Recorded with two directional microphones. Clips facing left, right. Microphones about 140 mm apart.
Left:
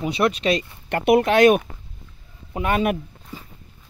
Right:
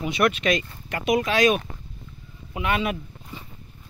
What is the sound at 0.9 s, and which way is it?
Speech, 60° left (ahead or behind).